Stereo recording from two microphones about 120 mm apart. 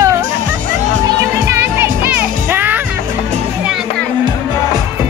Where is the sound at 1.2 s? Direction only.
20° right (ahead or behind).